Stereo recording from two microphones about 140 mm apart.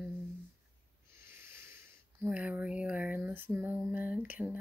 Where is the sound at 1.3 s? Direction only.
15° right (ahead or behind).